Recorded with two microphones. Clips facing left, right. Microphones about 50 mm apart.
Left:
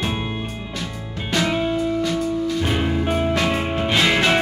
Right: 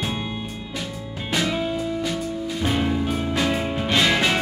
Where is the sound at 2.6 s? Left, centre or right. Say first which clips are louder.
Left 1 dB; centre.